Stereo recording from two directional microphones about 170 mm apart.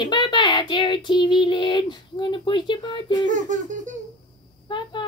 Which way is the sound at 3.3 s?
45° right (ahead or behind).